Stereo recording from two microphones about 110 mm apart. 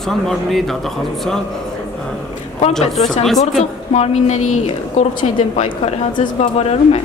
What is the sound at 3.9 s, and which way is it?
A woman's voice, 80° left.